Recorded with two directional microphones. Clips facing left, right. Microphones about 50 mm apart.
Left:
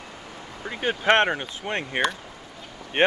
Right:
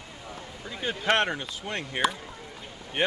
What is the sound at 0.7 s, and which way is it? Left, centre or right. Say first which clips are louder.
Speech: left 5 dB; left.